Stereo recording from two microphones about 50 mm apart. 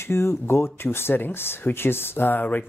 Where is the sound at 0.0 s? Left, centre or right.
Left.